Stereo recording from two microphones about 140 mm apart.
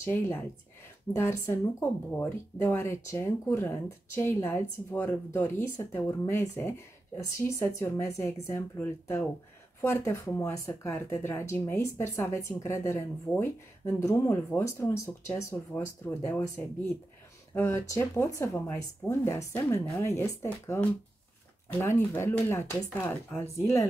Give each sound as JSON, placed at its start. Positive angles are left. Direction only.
{"t": 0.0, "sound": "speech", "side_deg": 15}